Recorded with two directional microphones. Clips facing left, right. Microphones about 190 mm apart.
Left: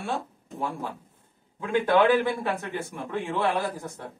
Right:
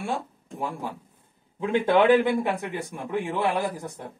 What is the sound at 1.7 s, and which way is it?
Speech, 20° right (ahead or behind).